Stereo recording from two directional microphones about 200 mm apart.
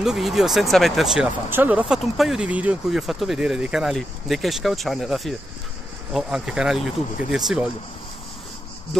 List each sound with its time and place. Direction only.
0.0 s speech: centre (ahead or behind)